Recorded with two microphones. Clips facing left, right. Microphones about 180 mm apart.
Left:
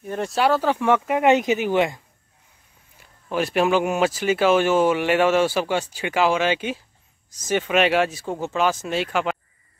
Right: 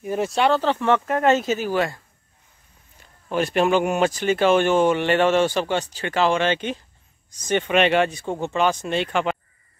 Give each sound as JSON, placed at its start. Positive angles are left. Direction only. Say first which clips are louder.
{"t": 0.0, "sound": "speech", "louder": "right 1 dB", "side_deg": -5}
{"t": 3.3, "sound": "speech", "louder": "right 1 dB", "side_deg": 5}